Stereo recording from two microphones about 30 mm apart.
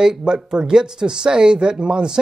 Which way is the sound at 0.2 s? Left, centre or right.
Right.